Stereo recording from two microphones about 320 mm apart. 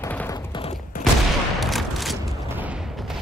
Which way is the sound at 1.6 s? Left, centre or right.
Centre.